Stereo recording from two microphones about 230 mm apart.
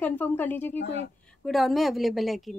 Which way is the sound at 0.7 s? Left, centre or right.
Left.